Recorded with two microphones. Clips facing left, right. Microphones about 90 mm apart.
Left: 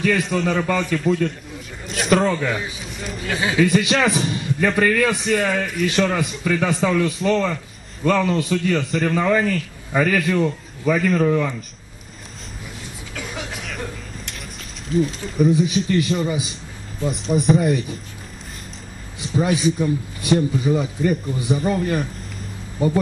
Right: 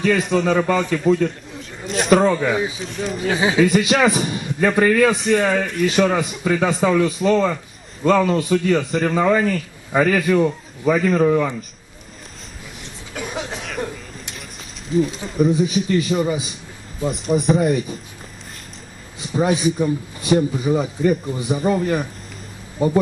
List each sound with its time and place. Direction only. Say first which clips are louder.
0.0 s a man's voice: right 2 dB; 20° right (ahead or behind); by 2.1 s centre (ahead or behind)
2.1 s a man's voice: right 3 dB; 15° right (ahead or behind)
2.8 s speech: right 6 dB; centre (ahead or behind)
3.3 s a man's voice: right 2 dB; 15° right (ahead or behind)
13.1 s a sound: right 4 dB; 20° right (ahead or behind)
14.9 s a man's voice: right 1 dB; centre (ahead or behind); by 16.3 s 15° right (ahead or behind)
17.1 s speech: even; centre (ahead or behind)
19.3 s a man's voice: right 1 dB; 20° right (ahead or behind)
21.5 s speech: right 4 dB; 5° right (ahead or behind)
22.8 s a man's voice: right 1 dB; 25° right (ahead or behind)